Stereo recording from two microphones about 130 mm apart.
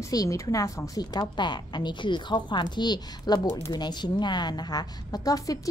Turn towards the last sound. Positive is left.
turn(degrees=25)  # may be behind; listen again after turning